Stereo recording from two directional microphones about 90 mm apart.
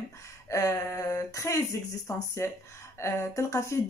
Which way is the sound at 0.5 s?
35° left (ahead or behind).